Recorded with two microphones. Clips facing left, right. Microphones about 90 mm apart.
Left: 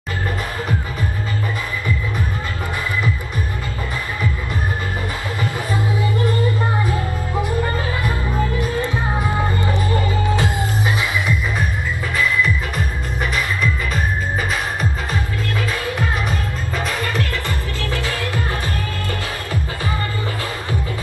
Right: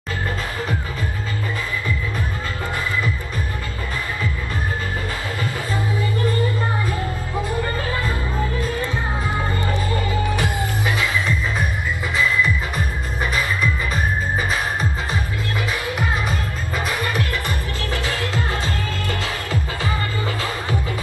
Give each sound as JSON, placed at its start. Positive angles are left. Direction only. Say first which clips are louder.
{"t": 5.4, "sound": "music", "louder": "left 4 dB", "side_deg": 20}
{"t": 8.5, "sound": "music", "louder": "left 3 dB", "side_deg": 15}
{"t": 16.3, "sound": "music", "louder": "left 1 dB", "side_deg": -15}